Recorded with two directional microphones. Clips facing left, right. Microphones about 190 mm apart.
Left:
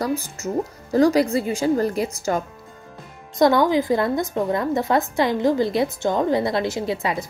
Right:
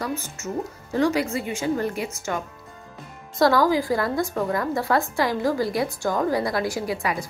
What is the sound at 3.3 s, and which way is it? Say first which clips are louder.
A woman's voice: left 2 dB; 20° left (ahead or behind).